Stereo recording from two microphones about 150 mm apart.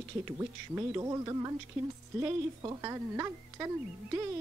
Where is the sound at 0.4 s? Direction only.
20° right (ahead or behind).